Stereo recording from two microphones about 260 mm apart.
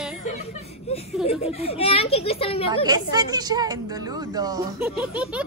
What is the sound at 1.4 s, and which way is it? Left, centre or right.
Speech, left.